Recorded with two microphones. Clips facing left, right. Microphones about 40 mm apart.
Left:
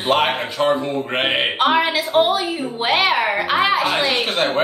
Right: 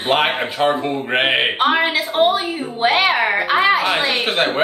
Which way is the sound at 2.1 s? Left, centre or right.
Right.